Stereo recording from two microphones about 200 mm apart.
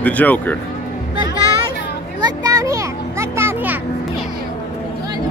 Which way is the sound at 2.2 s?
20° right (ahead or behind).